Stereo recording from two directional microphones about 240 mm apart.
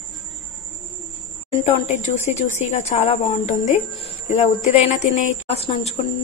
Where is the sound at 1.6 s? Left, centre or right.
Left.